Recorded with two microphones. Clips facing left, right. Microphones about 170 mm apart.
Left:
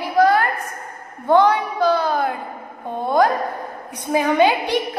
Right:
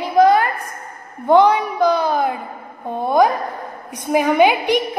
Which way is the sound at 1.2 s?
15° right (ahead or behind).